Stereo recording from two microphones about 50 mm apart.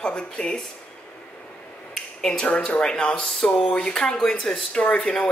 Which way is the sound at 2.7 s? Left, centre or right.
Centre.